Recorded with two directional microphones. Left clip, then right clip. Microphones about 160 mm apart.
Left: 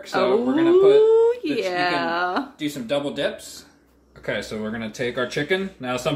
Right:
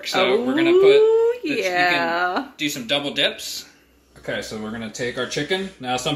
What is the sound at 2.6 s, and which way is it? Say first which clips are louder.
Speech: right 2 dB; 20° left (ahead or behind).